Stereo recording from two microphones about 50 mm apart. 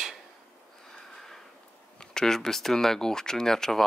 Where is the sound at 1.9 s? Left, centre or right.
Centre.